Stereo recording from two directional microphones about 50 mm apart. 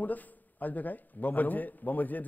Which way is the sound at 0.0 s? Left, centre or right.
Left.